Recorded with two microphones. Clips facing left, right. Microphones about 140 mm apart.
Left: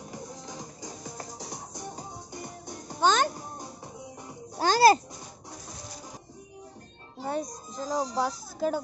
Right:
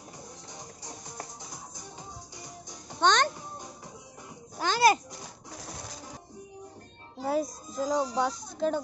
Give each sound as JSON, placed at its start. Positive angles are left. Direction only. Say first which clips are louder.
{"t": 1.4, "sound": "music", "louder": "left 5 dB", "side_deg": 75}
{"t": 3.0, "sound": "a child's voice", "louder": "left 1 dB", "side_deg": 5}
{"t": 4.6, "sound": "a sound", "louder": "left 4 dB", "side_deg": 35}
{"t": 7.2, "sound": "speech", "louder": "right 3 dB", "side_deg": -5}